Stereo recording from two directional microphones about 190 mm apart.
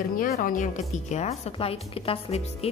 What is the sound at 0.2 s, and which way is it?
Speech, 45° left (ahead or behind).